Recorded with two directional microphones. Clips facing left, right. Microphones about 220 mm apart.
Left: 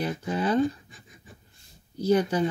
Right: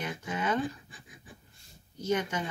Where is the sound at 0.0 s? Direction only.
35° left (ahead or behind).